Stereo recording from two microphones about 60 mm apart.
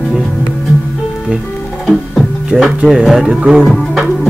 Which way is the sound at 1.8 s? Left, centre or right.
Centre.